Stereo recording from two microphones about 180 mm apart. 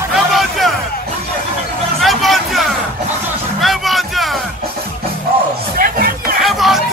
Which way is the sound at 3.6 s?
Centre (ahead or behind).